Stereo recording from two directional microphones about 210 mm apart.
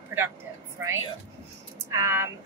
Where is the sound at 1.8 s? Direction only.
15° right (ahead or behind).